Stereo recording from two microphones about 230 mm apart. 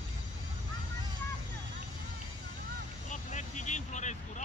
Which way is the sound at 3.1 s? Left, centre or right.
Left.